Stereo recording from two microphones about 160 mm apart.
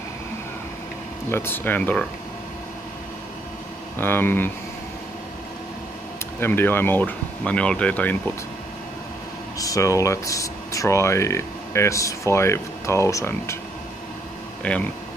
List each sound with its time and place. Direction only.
1.3 s speech: 15° left (ahead or behind)
4.0 s speech: 15° left (ahead or behind)
6.4 s speech: 15° left (ahead or behind)
9.6 s speech: 20° left (ahead or behind)
14.6 s speech: 10° left (ahead or behind)